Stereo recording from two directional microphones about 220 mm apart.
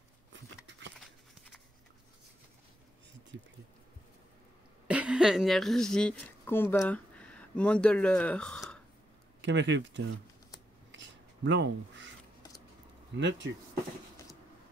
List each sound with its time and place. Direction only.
0.7 s a sound: 55° right (ahead or behind)
0.9 s horse: centre (ahead or behind)
3.3 s speech: 60° right (ahead or behind)
4.8 s speech: 5° right (ahead or behind)
9.4 s speech: 55° right (ahead or behind)
10.9 s a sound: 55° right (ahead or behind)
13.2 s speech: 55° right (ahead or behind)